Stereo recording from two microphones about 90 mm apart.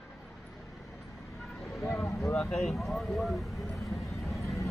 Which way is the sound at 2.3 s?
5° left (ahead or behind).